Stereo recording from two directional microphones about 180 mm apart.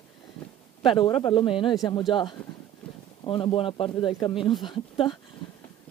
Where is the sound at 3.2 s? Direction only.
30° left (ahead or behind).